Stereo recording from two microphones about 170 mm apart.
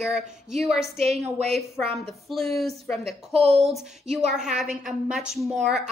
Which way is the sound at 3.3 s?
35° right (ahead or behind).